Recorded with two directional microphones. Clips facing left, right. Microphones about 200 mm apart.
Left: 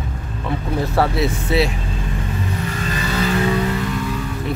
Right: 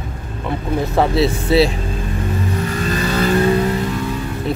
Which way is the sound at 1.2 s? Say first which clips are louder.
Right 4 dB; 30° right (ahead or behind).